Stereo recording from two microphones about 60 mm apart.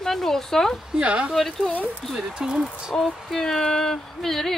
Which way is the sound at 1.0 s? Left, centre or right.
Right.